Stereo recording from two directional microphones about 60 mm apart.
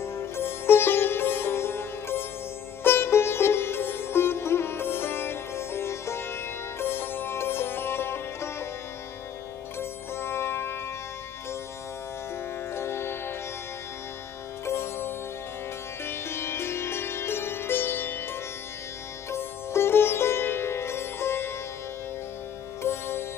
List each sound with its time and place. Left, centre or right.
0.0 s sitar: left
9.8 s sitar: left
12.7 s music: left
14.7 s music: left
19.3 s sitar: left
22.8 s music: left